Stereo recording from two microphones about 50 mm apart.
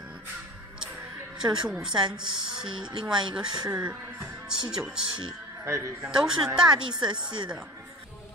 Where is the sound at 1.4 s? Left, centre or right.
Centre.